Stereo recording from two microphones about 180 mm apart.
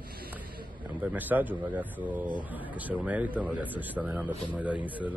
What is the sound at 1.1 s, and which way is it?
Speech, 10° right (ahead or behind).